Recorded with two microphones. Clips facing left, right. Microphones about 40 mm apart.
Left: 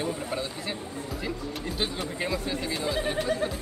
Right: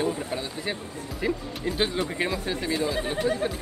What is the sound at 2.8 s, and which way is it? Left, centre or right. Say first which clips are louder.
Speech: right 1 dB; centre.